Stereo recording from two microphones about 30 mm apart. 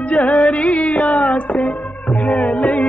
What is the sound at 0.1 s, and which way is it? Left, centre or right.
Music, left.